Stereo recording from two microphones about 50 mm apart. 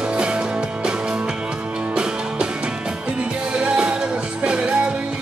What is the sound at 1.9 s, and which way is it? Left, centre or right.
Music, centre.